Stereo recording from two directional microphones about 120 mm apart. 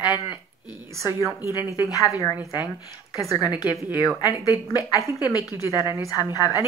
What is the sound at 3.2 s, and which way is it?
Speech, 30° left (ahead or behind).